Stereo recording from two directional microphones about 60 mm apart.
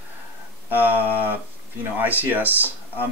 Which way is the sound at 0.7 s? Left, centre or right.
Right.